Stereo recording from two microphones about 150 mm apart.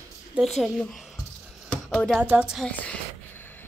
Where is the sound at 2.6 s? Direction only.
10° left (ahead or behind).